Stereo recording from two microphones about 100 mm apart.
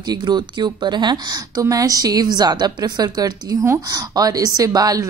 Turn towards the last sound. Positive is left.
turn(degrees=-40)  # may be behind; listen again after turning